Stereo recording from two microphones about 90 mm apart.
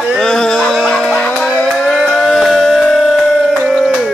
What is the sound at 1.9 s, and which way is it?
Music, centre (ahead or behind).